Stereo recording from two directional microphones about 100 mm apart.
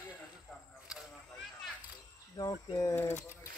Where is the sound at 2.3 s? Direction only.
35° left (ahead or behind).